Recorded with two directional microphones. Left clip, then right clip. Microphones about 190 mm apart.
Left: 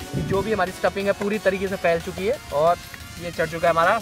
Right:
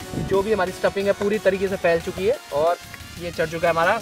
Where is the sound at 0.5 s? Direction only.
40° right (ahead or behind).